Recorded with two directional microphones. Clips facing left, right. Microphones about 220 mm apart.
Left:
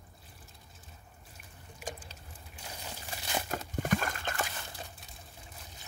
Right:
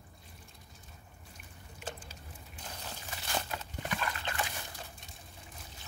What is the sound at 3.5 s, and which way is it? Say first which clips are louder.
Horse: left 7 dB; 45° left (ahead or behind).